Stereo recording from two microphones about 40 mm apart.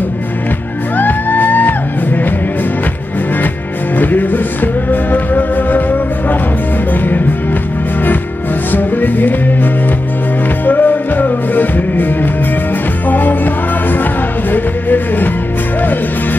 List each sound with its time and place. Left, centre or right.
0.9 s music: left
3.9 s music: left
8.7 s music: left